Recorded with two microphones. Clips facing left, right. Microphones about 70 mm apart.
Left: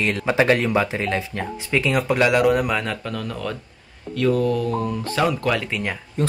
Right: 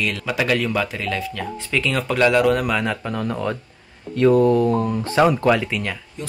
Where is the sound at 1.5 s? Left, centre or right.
Centre.